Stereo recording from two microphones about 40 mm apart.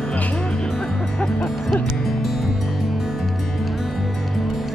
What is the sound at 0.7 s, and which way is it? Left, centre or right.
Music, centre.